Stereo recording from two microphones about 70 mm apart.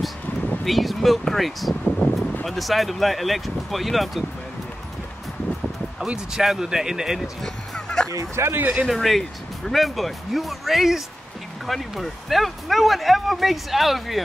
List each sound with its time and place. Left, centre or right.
0.7 s speech: centre
1.9 s speech: centre
2.4 s speech: centre
5.9 s speech: centre
7.4 s fowl: centre
8.1 s speech: right
8.5 s speech: right
8.8 s speech: centre